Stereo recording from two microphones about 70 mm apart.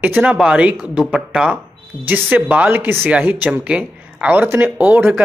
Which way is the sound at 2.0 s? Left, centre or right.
Right.